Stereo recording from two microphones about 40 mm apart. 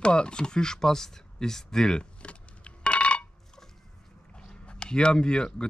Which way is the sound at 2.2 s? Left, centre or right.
Left.